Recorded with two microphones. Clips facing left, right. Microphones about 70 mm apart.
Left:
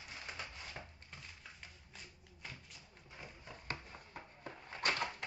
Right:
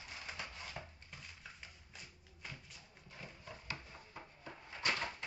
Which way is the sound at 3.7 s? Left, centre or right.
Left.